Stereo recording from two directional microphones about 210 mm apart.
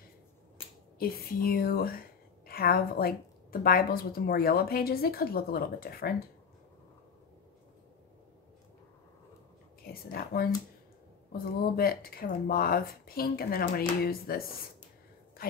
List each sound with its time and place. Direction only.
0.9 s a woman's voice: 45° left (ahead or behind)
10.1 s a woman's voice: 45° left (ahead or behind)